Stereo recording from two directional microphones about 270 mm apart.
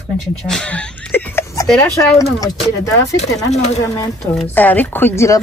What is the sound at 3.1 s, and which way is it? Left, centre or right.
Speech, left.